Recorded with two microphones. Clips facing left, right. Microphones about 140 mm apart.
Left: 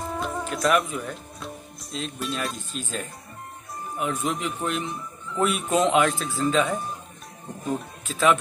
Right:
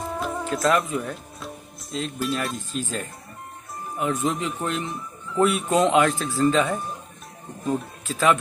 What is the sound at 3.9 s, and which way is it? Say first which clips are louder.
Speech: right 3 dB; 25° right (ahead or behind).